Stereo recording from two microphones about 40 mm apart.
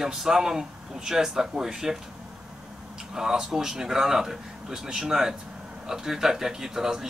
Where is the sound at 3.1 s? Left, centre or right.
Centre.